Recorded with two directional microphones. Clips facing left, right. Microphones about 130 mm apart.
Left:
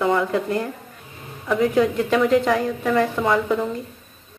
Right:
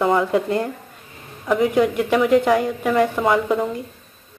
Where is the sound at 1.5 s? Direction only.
5° right (ahead or behind).